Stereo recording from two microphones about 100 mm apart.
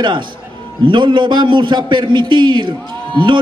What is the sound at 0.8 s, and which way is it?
A man's voice, 55° right (ahead or behind).